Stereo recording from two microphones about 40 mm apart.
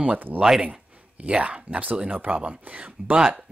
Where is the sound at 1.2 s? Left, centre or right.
Right.